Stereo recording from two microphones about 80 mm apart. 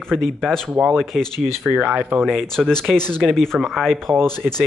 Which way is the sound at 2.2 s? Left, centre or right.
Centre.